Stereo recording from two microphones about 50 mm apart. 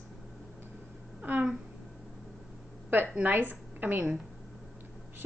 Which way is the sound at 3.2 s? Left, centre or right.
Right.